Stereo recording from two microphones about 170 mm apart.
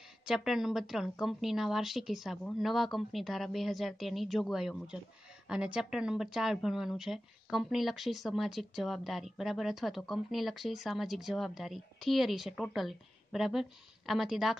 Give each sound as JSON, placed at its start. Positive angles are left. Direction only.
{"t": 0.2, "sound": "a woman's voice", "side_deg": -5}